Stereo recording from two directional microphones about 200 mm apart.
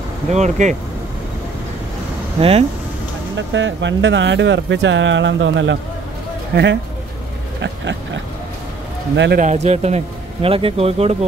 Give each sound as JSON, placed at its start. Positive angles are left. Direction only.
{"t": 0.3, "sound": "speech", "side_deg": -35}
{"t": 2.4, "sound": "speech", "side_deg": -30}
{"t": 3.3, "sound": "speech", "side_deg": -65}
{"t": 9.4, "sound": "speech", "side_deg": -35}